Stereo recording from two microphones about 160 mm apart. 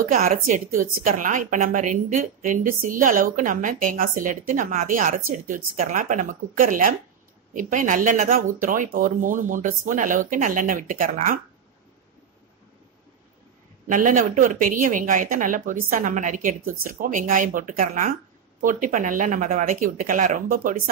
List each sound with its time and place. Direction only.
0.0 s a woman's voice: 55° right (ahead or behind)
13.8 s a woman's voice: 55° right (ahead or behind)